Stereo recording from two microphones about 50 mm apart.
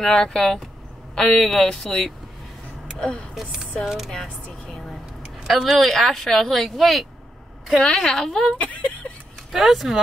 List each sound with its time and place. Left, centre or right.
0.0 s speech: centre
3.8 s speech: centre
4.1 s speech: centre
5.4 s speech: centre
7.7 s speech: centre
9.5 s speech: centre